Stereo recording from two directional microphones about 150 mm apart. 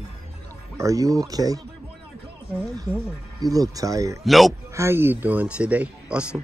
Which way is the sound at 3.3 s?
25° right (ahead or behind).